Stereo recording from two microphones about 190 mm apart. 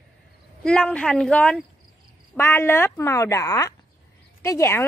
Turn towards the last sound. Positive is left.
turn(degrees=15)  # may be behind; listen again after turning